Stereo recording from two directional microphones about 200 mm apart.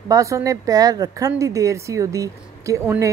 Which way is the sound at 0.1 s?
15° right (ahead or behind).